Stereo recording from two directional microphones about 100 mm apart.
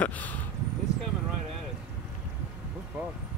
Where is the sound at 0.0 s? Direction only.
15° left (ahead or behind).